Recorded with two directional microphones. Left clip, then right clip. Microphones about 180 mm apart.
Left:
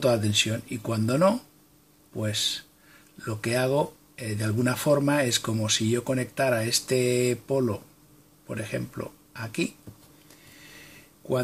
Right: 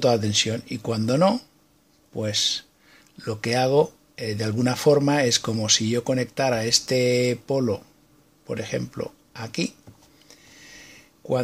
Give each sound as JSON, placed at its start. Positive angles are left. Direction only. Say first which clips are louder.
{"t": 0.0, "sound": "speech", "louder": "right 3 dB", "side_deg": -45}